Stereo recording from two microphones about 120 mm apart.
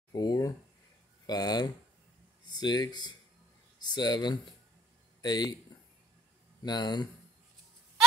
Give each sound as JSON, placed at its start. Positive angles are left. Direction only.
{"t": 0.1, "sound": "a sound", "side_deg": 30}
{"t": 1.2, "sound": "speech", "side_deg": 35}
{"t": 6.6, "sound": "speech", "side_deg": 35}